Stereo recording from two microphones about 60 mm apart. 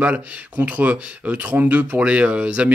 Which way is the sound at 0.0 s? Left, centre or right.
Right.